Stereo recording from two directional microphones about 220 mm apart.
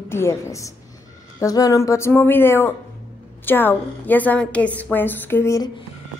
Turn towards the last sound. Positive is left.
turn(degrees=15)  # may be behind; listen again after turning